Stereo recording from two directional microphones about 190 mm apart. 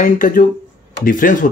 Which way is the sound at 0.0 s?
45° left (ahead or behind).